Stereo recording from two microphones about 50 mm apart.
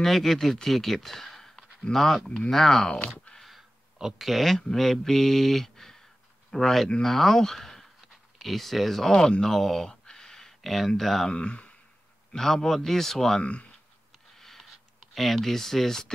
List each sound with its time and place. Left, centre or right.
0.0 s a man's voice: centre
3.3 s a man's voice: centre
9.4 s a sound: centre
11.0 s speech: centre
11.2 s speech: left
12.3 s a man's voice: centre
13.4 s speech: left
14.4 s a sound: centre
15.1 s speech: centre